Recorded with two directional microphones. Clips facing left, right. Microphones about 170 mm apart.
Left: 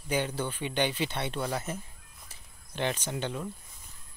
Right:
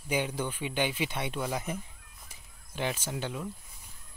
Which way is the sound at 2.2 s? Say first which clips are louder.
Even; 5° right (ahead or behind).